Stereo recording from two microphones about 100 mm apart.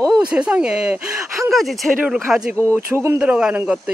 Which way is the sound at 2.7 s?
25° right (ahead or behind).